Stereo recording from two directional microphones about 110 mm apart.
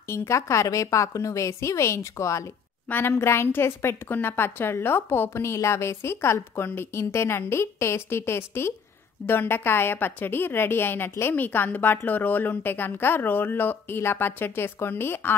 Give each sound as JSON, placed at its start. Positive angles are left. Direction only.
{"t": 0.1, "sound": "a woman's voice", "side_deg": 25}